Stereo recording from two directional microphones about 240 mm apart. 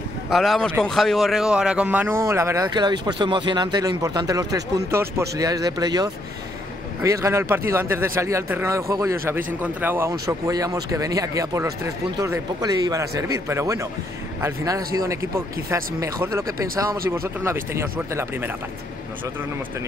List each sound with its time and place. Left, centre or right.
0.3 s a man's voice: centre